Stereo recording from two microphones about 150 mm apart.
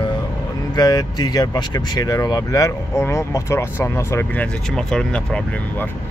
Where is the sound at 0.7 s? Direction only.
25° left (ahead or behind).